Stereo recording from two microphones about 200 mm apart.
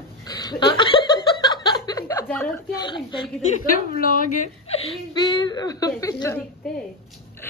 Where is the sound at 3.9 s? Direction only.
45° left (ahead or behind).